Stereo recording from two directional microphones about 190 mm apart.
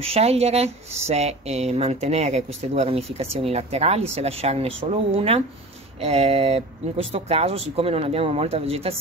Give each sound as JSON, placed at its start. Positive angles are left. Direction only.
{"t": 0.0, "sound": "speech", "side_deg": -30}